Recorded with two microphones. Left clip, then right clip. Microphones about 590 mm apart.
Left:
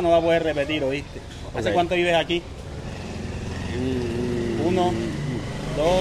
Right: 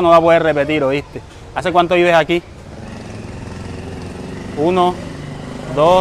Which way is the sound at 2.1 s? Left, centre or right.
Right.